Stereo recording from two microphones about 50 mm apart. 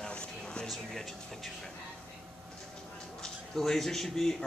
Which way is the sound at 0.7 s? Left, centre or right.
Centre.